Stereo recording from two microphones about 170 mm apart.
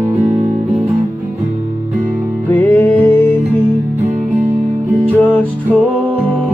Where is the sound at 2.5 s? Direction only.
10° left (ahead or behind).